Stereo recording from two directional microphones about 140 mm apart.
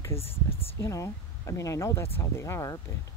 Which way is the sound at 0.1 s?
20° left (ahead or behind).